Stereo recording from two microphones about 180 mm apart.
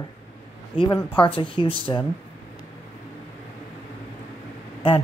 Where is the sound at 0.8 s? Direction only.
25° left (ahead or behind).